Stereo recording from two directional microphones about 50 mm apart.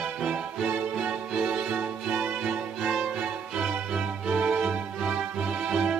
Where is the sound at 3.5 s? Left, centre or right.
Right.